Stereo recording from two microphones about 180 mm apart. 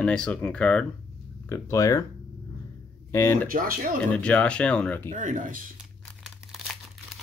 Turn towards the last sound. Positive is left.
turn(degrees=0)  # may be behind; listen again after turning